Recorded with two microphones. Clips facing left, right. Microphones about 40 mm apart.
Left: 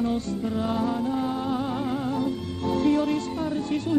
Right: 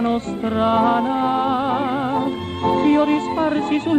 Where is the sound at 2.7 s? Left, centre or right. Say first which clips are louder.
Right 7 dB; right.